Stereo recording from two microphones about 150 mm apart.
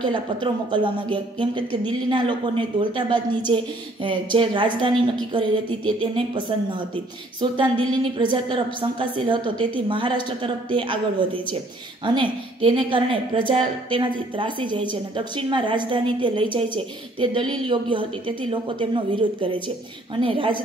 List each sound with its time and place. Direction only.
0.0 s a woman's voice: 35° right (ahead or behind)
7.3 s a woman's voice: 30° right (ahead or behind)